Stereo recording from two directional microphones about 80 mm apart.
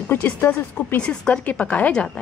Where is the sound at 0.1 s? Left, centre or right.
Left.